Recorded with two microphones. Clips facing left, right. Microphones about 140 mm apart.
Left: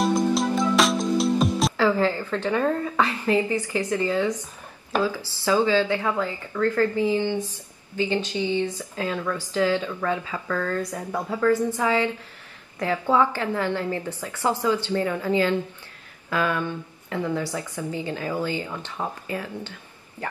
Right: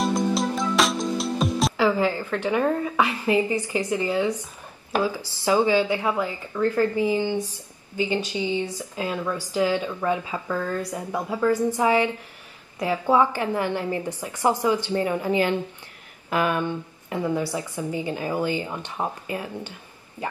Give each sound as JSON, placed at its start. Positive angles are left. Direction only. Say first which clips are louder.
{"t": 0.0, "sound": "music", "louder": "left 1 dB", "side_deg": 0}
{"t": 1.8, "sound": "a woman's voice", "louder": "even", "side_deg": -15}